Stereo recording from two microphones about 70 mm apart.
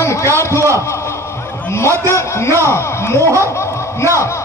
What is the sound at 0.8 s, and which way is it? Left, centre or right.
A man's voice, left.